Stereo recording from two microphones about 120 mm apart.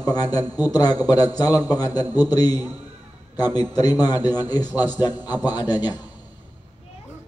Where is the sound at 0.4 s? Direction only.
20° right (ahead or behind).